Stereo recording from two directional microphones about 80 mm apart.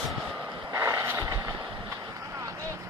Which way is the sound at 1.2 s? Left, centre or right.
Right.